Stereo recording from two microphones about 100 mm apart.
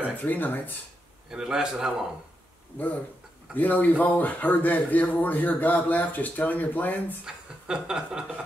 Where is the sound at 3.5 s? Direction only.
15° left (ahead or behind).